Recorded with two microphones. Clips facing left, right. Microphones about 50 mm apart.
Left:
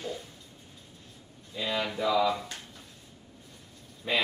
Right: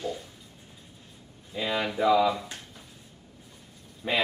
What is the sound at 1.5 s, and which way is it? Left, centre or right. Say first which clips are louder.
Speech: right 2 dB; centre.